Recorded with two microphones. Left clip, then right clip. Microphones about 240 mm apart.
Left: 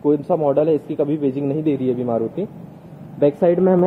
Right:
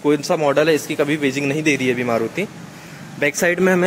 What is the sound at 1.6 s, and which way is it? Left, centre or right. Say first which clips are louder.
Speech: right 3 dB; centre.